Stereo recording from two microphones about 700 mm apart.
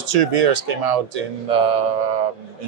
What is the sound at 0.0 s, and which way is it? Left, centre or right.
A man's voice, right.